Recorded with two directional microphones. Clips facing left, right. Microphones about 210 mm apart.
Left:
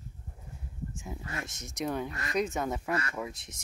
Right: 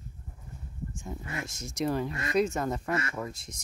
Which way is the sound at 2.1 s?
25° right (ahead or behind).